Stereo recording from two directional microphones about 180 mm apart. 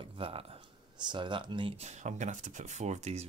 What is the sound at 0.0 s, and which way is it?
Speech, 30° right (ahead or behind).